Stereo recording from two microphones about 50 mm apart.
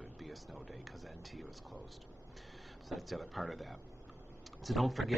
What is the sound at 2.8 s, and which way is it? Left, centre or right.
Speech, centre.